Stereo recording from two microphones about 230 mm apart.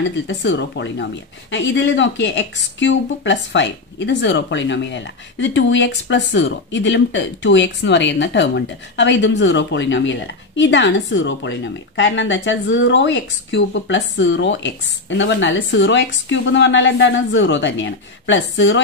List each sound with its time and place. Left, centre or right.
0.3 s a woman's voice: left